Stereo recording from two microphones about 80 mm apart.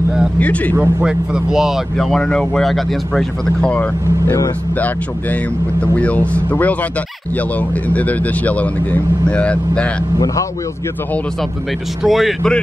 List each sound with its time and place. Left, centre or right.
0.4 s a man's voice: centre
1.0 s a man's voice: centre
2.0 s speech: centre
5.8 s speech: centre
7.9 s a man's voice: centre
12.0 s speech: centre